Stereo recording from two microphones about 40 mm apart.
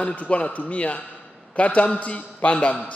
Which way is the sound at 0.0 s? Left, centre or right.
Left.